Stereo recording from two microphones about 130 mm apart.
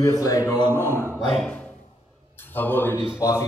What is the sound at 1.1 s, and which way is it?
Music, centre (ahead or behind).